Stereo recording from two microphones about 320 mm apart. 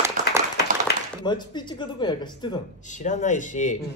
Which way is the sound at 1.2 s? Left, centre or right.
Centre.